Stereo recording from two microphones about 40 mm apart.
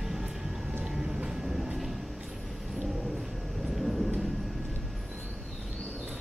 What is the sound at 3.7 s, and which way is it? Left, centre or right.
Vehicle, centre.